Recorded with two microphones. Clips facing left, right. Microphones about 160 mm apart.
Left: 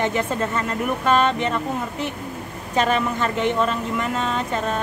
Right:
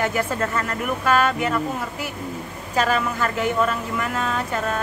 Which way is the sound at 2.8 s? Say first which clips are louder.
Left 1 dB; 25° left (ahead or behind).